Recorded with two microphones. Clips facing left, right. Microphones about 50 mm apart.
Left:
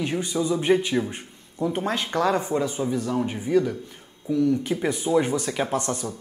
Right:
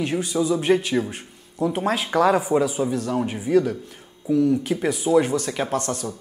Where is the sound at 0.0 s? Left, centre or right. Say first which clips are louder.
Right 2 dB; centre.